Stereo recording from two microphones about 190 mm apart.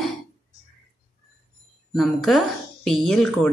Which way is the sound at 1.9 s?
Centre (ahead or behind).